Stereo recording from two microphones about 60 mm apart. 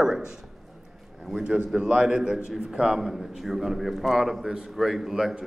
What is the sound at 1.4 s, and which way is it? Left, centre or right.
A man's voice, centre.